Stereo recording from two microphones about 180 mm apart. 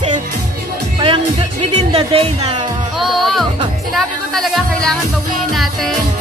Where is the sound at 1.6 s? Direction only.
35° right (ahead or behind).